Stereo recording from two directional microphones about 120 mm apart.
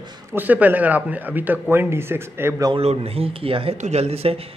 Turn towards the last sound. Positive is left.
turn(degrees=-60)  # may be behind; listen again after turning